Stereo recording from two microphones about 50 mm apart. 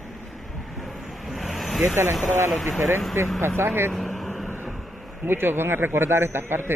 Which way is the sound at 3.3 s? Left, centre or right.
Right.